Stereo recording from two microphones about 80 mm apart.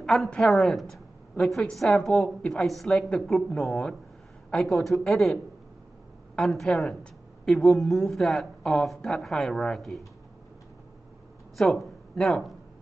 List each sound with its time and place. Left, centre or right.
0.0 s a woman's voice: centre
11.5 s speech: centre